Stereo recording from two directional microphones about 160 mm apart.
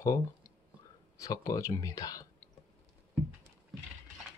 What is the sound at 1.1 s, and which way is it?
Speech, 20° left (ahead or behind).